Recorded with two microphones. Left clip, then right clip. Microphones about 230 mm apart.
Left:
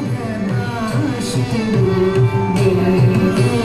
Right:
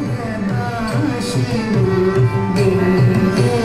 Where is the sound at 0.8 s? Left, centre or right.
Left.